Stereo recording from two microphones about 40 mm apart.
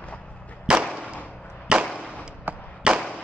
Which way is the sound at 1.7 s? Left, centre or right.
Right.